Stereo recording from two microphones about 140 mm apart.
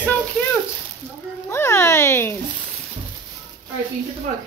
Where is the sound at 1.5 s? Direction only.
20° left (ahead or behind).